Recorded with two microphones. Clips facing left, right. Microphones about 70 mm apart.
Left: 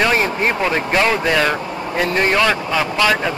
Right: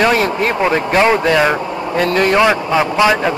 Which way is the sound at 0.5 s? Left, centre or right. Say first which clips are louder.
Right 4 dB; centre.